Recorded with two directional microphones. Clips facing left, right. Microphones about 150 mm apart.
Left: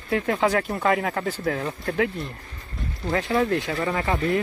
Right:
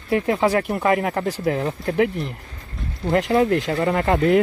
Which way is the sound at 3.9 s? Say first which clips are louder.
Right 6 dB; 50° right (ahead or behind).